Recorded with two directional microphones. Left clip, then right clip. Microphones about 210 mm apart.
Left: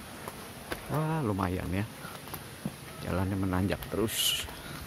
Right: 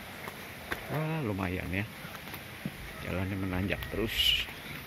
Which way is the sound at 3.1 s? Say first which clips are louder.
Left 4 dB; 15° left (ahead or behind).